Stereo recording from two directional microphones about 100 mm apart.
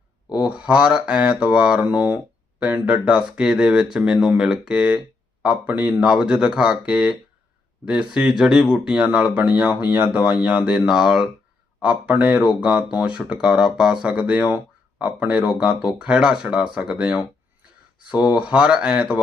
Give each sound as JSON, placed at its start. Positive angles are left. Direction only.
{"t": 0.4, "sound": "speech", "side_deg": -10}
{"t": 2.1, "sound": "a sound", "side_deg": -15}
{"t": 2.8, "sound": "speech", "side_deg": -10}